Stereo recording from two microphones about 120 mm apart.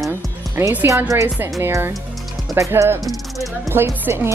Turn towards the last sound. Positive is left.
turn(degrees=-20)  # may be behind; listen again after turning